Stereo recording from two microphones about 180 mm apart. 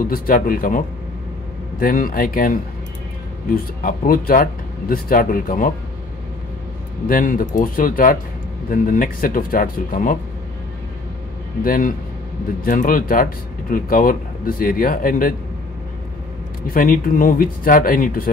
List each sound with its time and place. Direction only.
0.0 s speech: 50° left (ahead or behind)
3.8 s speech: 50° left (ahead or behind)
7.1 s speech: 50° left (ahead or behind)
11.6 s speech: 50° left (ahead or behind)
16.6 s speech: 50° left (ahead or behind)